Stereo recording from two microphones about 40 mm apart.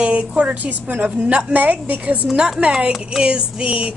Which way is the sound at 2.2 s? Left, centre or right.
Centre.